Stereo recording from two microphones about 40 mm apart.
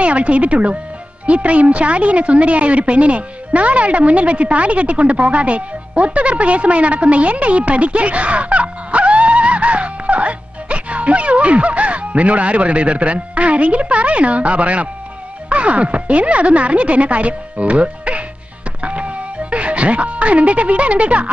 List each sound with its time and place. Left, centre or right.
0.0 s a woman's voice: right
18.8 s music: right